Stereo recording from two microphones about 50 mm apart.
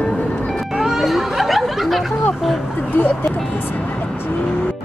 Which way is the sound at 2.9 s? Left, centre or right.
Left.